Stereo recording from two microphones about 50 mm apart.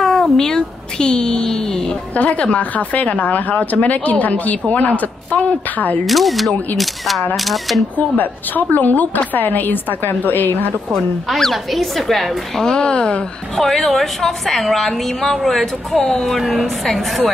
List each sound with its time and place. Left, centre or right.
0.0 s cat: centre
2.1 s a woman's voice: left
6.0 s a woman's voice: centre
8.2 s a woman's voice: left
11.2 s a woman's voice: centre
12.6 s speech: centre
13.6 s a woman's voice: centre